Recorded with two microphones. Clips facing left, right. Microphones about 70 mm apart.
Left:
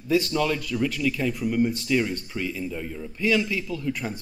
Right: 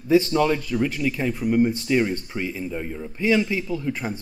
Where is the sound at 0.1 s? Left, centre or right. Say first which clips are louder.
Right 5 dB; right.